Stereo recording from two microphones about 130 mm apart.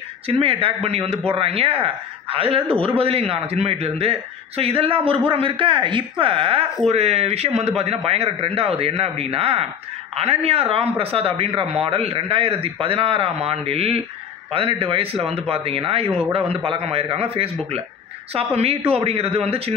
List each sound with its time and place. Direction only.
0.3 s a man's voice: 45° right (ahead or behind)